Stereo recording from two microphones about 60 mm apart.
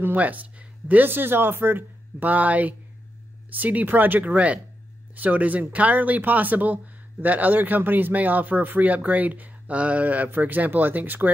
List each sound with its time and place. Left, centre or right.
0.0 s speech: right